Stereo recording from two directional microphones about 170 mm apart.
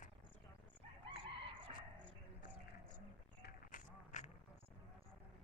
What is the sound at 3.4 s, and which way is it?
Duck, 50° left (ahead or behind).